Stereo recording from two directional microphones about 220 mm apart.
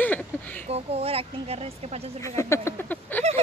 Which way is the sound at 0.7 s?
25° right (ahead or behind).